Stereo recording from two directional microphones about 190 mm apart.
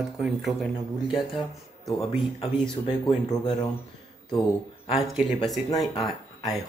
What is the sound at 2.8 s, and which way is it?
Speech, 25° left (ahead or behind).